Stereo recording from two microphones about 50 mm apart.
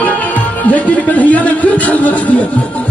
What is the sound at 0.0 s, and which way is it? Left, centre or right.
Speech, left.